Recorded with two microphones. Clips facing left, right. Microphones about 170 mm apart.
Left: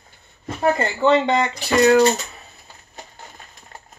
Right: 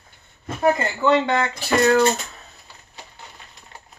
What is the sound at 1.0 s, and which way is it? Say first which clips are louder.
Speech: left 4 dB; 20° left (ahead or behind).